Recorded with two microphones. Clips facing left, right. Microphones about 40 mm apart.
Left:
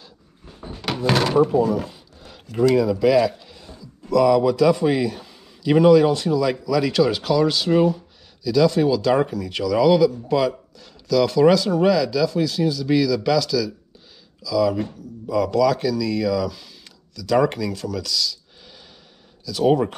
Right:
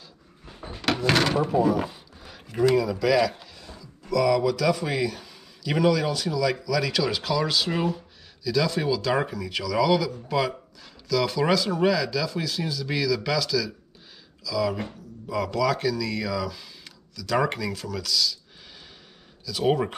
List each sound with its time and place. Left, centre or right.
0.9 s speech: centre
1.5 s a sound: centre
2.7 s speech: centre
3.0 s a man's voice: centre
3.6 s a sound: left
4.3 s a man's voice: centre
19.4 s speech: centre